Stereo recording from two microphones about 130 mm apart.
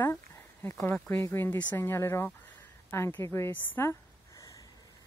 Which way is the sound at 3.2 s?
20° left (ahead or behind).